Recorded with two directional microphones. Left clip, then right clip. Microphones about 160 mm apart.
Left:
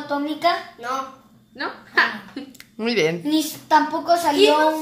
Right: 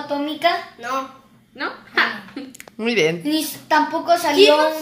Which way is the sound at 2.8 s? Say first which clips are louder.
Right 2 dB; centre (ahead or behind).